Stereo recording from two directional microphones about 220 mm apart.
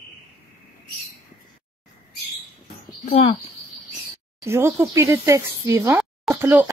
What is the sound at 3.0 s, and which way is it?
Speech, 30° left (ahead or behind).